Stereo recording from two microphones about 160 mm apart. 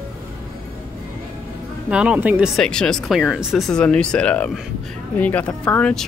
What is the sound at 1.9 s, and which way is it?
Speech, 5° right (ahead or behind).